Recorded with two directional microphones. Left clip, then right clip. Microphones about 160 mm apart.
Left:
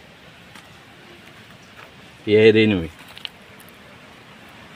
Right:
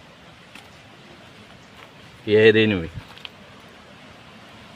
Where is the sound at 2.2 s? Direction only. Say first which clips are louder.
Left 1 dB; 50° left (ahead or behind).